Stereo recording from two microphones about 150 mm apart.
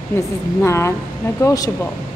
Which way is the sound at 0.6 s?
20° left (ahead or behind).